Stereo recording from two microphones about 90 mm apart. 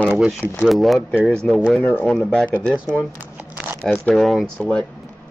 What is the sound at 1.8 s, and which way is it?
Speech, 20° left (ahead or behind).